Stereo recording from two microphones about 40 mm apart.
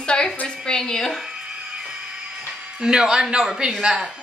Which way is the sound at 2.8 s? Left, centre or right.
Centre.